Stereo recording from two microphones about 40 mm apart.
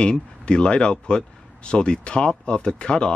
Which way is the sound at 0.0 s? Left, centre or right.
Left.